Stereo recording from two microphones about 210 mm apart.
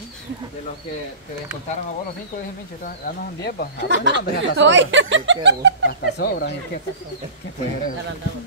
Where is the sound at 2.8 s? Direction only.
45° left (ahead or behind).